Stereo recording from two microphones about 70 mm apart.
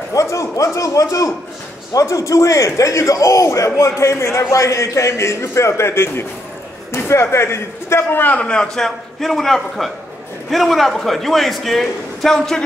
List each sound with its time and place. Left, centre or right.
0.1 s a man's voice: left
8.5 s a man's voice: centre